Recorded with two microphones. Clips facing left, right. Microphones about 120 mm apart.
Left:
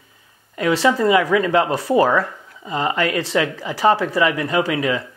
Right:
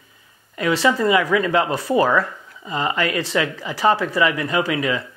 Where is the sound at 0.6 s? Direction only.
45° left (ahead or behind).